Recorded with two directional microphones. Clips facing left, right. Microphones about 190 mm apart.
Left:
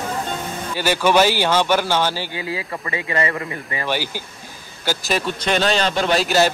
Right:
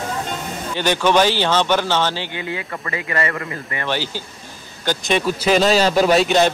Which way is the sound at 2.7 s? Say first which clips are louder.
Even; 20° left (ahead or behind).